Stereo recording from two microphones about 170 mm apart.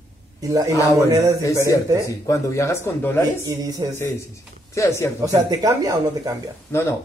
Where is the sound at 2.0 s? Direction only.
20° left (ahead or behind).